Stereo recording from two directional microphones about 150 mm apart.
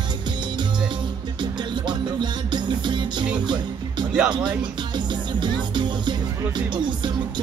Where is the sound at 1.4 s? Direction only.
30° right (ahead or behind).